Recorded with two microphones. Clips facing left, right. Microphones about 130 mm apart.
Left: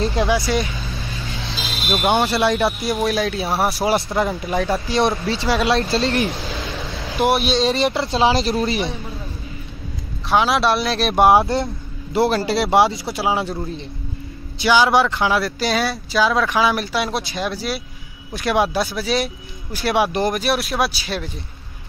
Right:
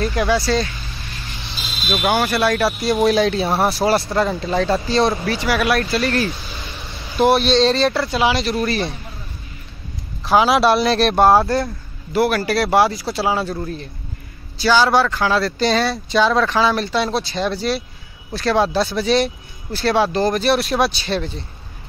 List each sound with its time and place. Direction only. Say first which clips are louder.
0.0 s speech: right 1 dB; 25° left (ahead or behind)
2.0 s speech: even; 25° left (ahead or behind)
2.9 s speech: right 5 dB; centre (ahead or behind)
3.8 s speech: right 2 dB; 20° left (ahead or behind)
5.2 s speech: even; 25° left (ahead or behind)
6.4 s a sound: left 6 dB; 90° left
7.2 s speech: right 3 dB; 5° left (ahead or behind)
7.8 s speech: even; 20° left (ahead or behind)
10.2 s speech: right 3 dB; centre (ahead or behind)
11.1 s speech: left 2 dB; 15° left (ahead or behind)
15.3 s speech: right 2 dB; 5° left (ahead or behind)
20.4 s speech: right 3 dB; centre (ahead or behind)